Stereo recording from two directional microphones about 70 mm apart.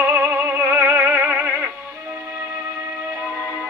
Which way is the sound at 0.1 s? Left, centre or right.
Right.